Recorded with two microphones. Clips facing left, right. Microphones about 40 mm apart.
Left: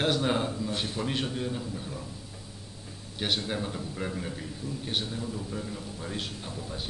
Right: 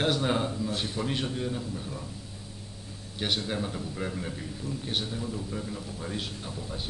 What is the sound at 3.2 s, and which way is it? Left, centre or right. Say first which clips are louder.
A man's voice: even; centre.